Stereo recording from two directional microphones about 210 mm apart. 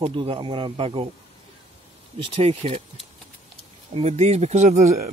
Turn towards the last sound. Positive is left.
turn(degrees=-30)  # may be behind; listen again after turning